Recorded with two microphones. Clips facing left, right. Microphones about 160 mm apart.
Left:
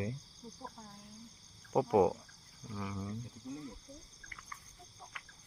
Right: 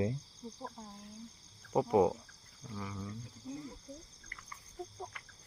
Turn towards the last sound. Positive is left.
turn(degrees=10)  # may be behind; listen again after turning